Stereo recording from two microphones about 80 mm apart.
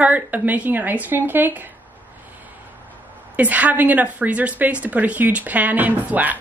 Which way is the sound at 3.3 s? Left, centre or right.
Centre.